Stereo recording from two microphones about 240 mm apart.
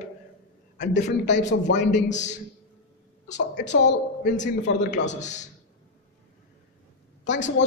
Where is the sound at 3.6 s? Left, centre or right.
Left.